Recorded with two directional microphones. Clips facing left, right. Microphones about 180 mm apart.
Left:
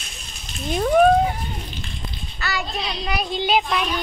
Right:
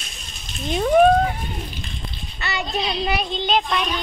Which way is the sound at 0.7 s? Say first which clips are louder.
Right 1 dB; centre (ahead or behind).